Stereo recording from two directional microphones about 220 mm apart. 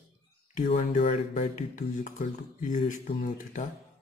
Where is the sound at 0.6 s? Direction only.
30° left (ahead or behind).